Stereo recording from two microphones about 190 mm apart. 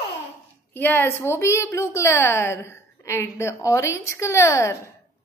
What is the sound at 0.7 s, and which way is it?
A woman's voice, 10° left (ahead or behind).